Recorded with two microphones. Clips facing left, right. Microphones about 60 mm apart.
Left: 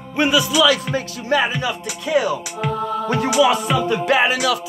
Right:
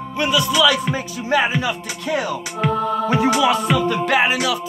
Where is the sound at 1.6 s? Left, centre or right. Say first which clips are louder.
Even; right.